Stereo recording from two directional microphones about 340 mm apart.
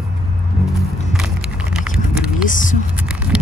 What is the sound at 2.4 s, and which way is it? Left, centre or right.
Speech, left.